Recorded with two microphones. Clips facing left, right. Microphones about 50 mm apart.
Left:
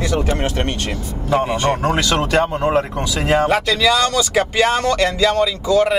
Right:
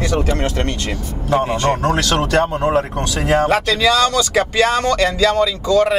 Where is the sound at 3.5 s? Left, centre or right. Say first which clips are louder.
Right 1 dB; right.